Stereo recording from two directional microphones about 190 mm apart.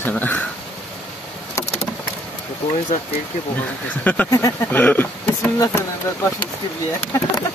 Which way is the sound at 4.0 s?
10° left (ahead or behind).